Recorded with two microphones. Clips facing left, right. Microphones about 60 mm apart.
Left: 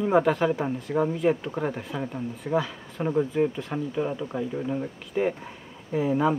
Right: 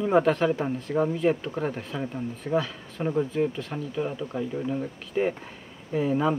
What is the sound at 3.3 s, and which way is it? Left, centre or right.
Speech, centre.